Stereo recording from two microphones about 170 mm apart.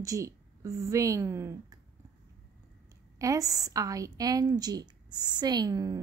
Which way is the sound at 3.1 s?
20° right (ahead or behind).